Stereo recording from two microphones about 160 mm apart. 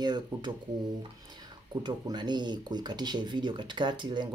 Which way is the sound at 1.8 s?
25° right (ahead or behind).